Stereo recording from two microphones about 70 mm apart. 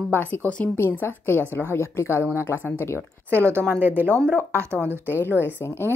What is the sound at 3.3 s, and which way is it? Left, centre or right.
Speech, right.